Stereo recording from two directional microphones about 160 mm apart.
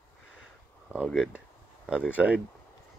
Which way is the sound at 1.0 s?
Centre (ahead or behind).